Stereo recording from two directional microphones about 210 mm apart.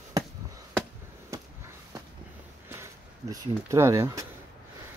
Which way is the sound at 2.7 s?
15° right (ahead or behind).